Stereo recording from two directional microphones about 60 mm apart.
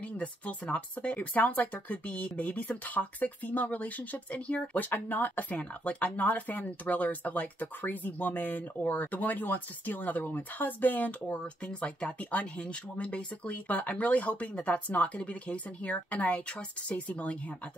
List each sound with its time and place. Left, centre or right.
0.2 s speech: left